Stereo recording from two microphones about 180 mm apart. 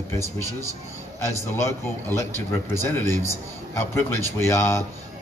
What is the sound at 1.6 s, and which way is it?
Speech, 15° left (ahead or behind).